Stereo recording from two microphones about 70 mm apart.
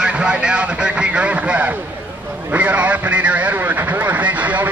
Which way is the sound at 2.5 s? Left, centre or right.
Right.